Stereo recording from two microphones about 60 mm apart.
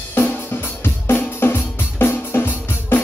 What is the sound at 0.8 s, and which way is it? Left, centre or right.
Drum, left.